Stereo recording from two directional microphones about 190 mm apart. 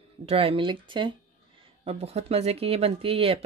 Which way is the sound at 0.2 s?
30° right (ahead or behind).